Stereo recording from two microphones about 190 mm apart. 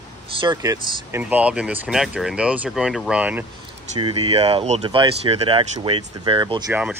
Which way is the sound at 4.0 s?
30° right (ahead or behind).